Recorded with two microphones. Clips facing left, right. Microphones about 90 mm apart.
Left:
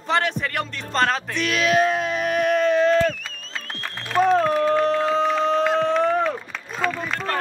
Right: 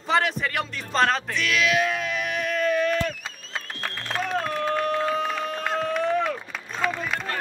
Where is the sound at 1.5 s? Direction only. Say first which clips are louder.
Left 4 dB; 40° left (ahead or behind).